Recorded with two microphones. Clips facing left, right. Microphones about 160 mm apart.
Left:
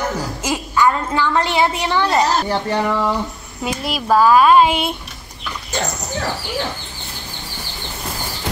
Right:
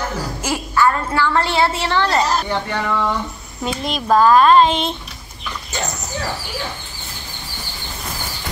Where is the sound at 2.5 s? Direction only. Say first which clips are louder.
Left 3 dB; 35° left (ahead or behind).